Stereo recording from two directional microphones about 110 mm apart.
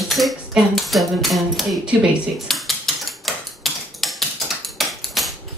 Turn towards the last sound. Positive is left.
turn(degrees=0)  # may be behind; listen again after turning